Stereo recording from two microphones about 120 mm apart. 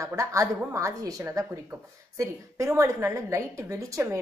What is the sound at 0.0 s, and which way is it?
A woman's voice, 25° right (ahead or behind).